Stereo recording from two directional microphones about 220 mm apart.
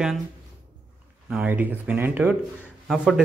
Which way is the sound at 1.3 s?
5° right (ahead or behind).